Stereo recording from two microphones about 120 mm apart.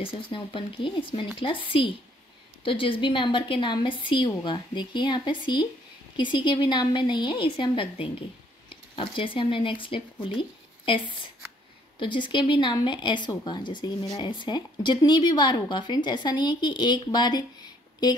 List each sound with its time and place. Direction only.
0.0 s a woman's voice: 50° left (ahead or behind)
12.0 s speech: 45° left (ahead or behind)